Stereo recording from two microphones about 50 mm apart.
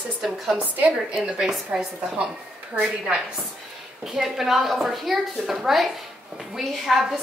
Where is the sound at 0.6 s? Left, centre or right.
Right.